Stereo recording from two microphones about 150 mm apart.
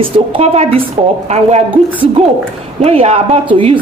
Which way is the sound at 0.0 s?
40° right (ahead or behind).